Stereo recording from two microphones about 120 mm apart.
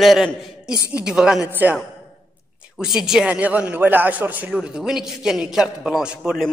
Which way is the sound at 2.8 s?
5° right (ahead or behind).